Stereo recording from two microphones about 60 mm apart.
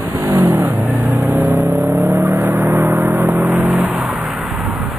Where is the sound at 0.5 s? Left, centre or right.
Right.